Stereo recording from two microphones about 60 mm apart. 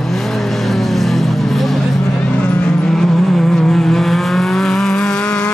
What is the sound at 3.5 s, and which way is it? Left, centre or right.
Vehicle, centre.